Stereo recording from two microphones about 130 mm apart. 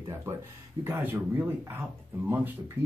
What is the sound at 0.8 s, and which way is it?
Speech, 15° right (ahead or behind).